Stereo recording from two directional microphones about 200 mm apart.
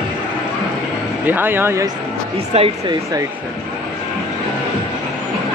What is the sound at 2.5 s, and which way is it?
Speech, 25° right (ahead or behind).